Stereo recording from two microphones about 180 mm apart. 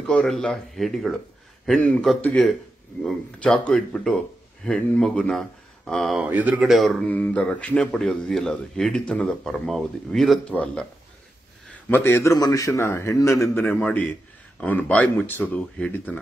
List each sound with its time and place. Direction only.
0.0 s a man's voice: 5° left (ahead or behind)